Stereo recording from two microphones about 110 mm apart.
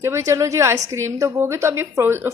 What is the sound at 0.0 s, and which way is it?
A woman's voice, 25° right (ahead or behind).